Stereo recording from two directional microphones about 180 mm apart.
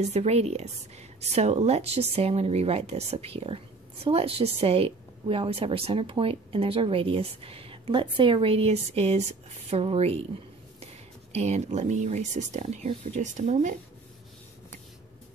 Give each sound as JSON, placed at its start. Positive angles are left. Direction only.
{"t": 0.0, "sound": "a woman's voice", "side_deg": -35}
{"t": 11.3, "sound": "a woman's voice", "side_deg": -40}